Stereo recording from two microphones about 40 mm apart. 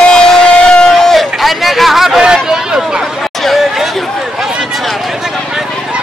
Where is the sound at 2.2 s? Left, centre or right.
Centre.